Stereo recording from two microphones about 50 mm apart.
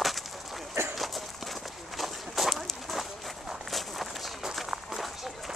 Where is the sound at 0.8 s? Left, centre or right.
Right.